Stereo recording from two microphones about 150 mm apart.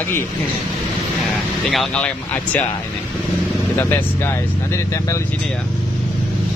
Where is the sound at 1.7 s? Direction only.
Centre (ahead or behind).